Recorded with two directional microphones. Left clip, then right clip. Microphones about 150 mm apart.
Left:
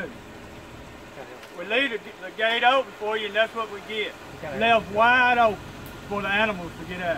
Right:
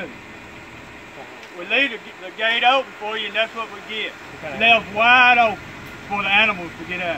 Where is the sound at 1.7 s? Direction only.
15° left (ahead or behind).